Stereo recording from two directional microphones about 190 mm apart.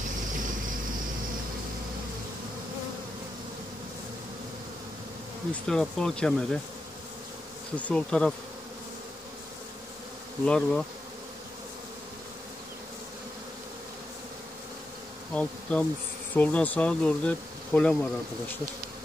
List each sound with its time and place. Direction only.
5.5 s speech: 5° left (ahead or behind)
7.7 s speech: 5° left (ahead or behind)
10.4 s speech: 5° left (ahead or behind)
15.3 s bee: 5° left (ahead or behind)
16.3 s speech: 10° left (ahead or behind)